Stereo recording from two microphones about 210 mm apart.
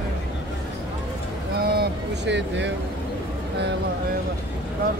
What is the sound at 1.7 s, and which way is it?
Vehicle, 55° right (ahead or behind).